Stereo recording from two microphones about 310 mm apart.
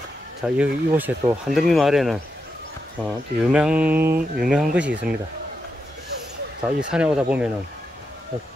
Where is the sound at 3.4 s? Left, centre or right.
Centre.